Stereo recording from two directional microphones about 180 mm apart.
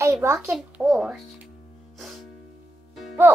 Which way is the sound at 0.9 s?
Centre (ahead or behind).